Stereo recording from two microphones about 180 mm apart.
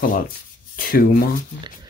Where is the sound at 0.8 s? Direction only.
55° left (ahead or behind).